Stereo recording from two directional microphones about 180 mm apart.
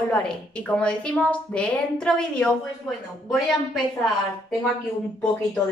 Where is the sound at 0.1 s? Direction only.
5° left (ahead or behind).